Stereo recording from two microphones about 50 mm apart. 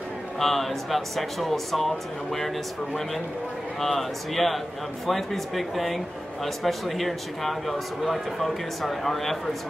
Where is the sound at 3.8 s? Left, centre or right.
Centre.